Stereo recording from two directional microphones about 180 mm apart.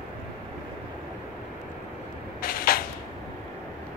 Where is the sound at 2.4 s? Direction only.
55° left (ahead or behind).